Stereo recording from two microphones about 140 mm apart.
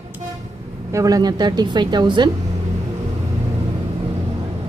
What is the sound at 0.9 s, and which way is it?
A woman's voice, 25° right (ahead or behind).